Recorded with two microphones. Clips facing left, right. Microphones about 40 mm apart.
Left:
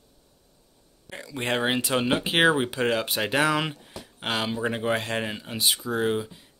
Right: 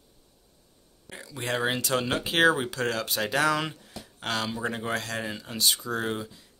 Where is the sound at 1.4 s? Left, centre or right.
Left.